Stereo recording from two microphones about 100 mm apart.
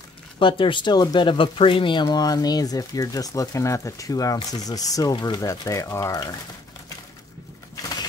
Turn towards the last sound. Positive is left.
turn(degrees=35)  # may be behind; listen again after turning